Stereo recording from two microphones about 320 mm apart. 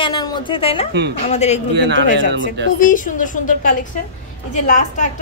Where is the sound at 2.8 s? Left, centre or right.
Left.